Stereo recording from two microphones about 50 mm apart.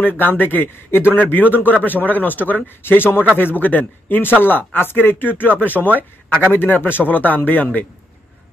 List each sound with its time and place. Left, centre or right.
0.0 s speech: left
2.8 s speech: left